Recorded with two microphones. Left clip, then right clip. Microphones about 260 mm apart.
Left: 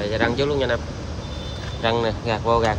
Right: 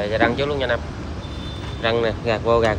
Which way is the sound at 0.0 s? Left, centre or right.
Centre.